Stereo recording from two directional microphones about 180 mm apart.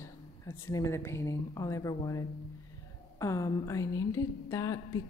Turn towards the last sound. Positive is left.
turn(degrees=20)  # may be behind; listen again after turning